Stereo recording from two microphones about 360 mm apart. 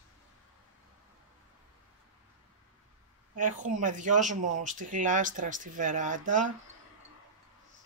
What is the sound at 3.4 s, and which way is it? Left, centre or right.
Speech, right.